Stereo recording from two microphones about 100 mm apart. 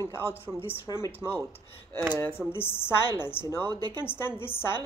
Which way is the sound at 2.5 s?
25° left (ahead or behind).